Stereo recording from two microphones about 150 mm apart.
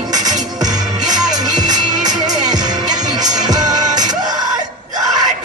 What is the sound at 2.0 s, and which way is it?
Music, 25° right (ahead or behind).